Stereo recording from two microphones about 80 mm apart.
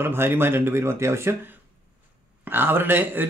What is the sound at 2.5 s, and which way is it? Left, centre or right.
Speech, right.